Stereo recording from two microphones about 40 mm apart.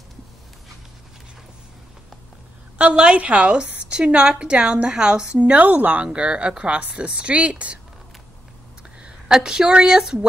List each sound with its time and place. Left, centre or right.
2.8 s a woman's voice: right
5.4 s speech: right
6.0 s a woman's voice: right
9.3 s speech: centre